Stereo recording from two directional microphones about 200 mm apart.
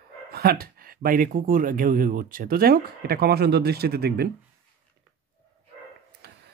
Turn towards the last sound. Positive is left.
turn(degrees=-55)  # may be behind; listen again after turning